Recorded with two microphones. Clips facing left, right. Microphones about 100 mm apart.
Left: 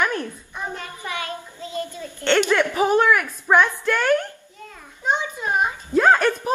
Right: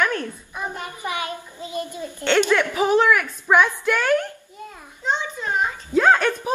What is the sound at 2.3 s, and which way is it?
Music, 15° left (ahead or behind).